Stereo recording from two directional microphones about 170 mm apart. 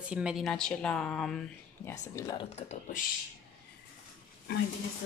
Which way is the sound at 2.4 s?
40° left (ahead or behind).